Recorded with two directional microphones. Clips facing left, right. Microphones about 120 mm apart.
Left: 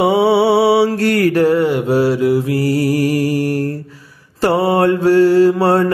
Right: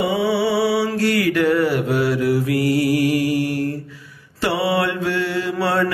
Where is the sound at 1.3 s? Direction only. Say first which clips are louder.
Left 4 dB; 35° left (ahead or behind).